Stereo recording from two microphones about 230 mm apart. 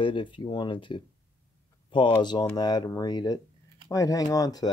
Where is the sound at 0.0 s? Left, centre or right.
Left.